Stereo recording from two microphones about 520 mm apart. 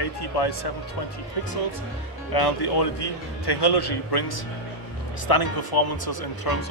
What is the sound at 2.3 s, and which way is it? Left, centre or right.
A man's voice, left.